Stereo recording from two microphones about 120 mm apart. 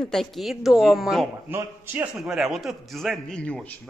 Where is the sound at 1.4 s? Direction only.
15° right (ahead or behind).